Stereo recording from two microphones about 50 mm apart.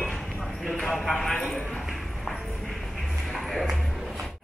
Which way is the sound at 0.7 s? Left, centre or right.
Centre.